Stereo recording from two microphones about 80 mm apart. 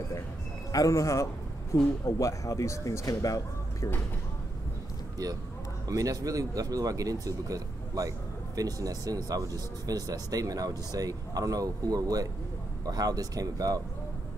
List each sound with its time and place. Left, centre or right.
0.7 s a man's voice: left
5.9 s speech: right